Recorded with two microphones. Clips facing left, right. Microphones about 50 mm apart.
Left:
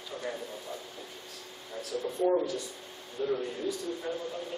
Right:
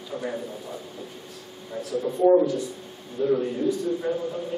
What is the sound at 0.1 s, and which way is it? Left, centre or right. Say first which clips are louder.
Speech: right 6 dB; centre.